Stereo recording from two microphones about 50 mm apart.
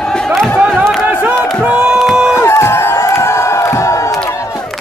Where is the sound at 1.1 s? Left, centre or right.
Right.